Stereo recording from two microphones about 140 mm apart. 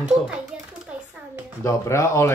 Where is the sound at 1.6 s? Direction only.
20° left (ahead or behind).